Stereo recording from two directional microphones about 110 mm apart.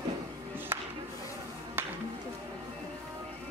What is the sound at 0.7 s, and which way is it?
Music, 20° right (ahead or behind).